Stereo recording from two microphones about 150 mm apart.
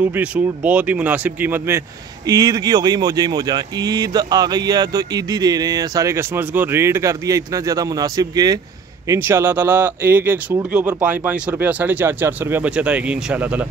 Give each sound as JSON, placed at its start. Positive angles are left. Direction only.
{"t": 0.0, "sound": "speech", "side_deg": -10}
{"t": 2.2, "sound": "speech", "side_deg": -25}